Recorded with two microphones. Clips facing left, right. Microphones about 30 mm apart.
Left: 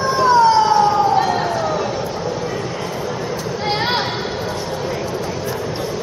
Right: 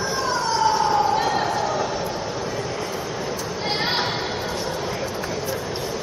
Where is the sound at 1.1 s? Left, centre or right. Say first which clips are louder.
Left 4 dB; centre.